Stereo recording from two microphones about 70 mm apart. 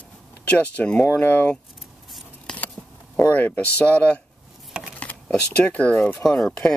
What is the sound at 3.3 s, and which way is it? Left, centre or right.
Speech, left.